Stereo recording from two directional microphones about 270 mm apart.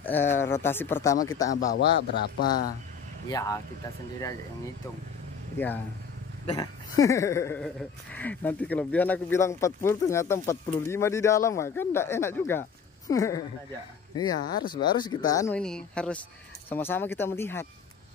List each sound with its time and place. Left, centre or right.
0.0 s speech: centre
1.8 s a man's voice: left
3.3 s speech: centre
5.6 s speech: centre